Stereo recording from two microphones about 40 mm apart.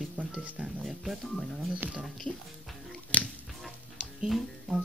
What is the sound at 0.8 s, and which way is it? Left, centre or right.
Speech, centre.